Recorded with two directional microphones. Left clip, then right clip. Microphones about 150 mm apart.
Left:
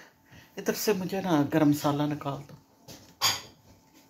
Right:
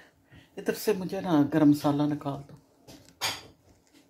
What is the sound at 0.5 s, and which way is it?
A woman's voice, 20° right (ahead or behind).